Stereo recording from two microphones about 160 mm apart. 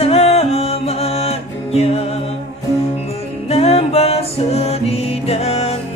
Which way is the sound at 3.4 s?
40° left (ahead or behind).